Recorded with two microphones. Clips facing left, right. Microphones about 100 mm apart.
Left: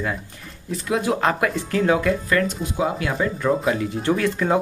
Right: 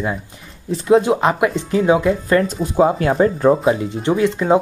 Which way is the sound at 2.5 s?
40° right (ahead or behind).